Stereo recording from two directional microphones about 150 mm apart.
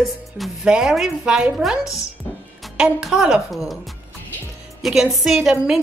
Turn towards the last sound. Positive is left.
turn(degrees=-5)  # may be behind; listen again after turning